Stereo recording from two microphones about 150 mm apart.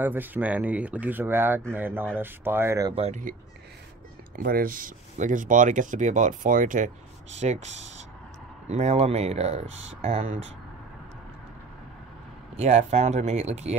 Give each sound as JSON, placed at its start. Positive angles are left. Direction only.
{"t": 0.0, "sound": "speech", "side_deg": -10}
{"t": 2.9, "sound": "speech", "side_deg": -40}
{"t": 4.4, "sound": "speech", "side_deg": -70}
{"t": 7.3, "sound": "speech", "side_deg": -45}
{"t": 12.5, "sound": "speech", "side_deg": -45}